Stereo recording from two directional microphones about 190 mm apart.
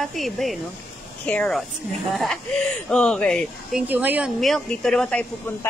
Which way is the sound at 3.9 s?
10° right (ahead or behind).